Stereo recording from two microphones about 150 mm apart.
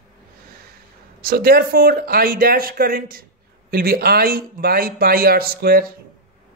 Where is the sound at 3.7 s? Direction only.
85° right.